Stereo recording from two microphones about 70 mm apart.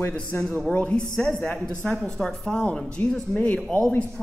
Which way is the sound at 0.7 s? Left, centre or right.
Centre.